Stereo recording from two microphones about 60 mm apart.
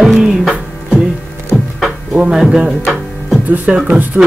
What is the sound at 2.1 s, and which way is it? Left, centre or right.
Music, centre.